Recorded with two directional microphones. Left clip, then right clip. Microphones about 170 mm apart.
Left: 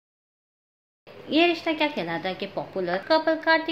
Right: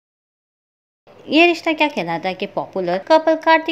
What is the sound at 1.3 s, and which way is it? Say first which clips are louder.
A woman's voice: right 8 dB; 40° right (ahead or behind).